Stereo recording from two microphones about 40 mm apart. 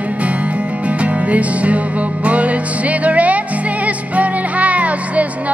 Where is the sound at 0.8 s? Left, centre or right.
Right.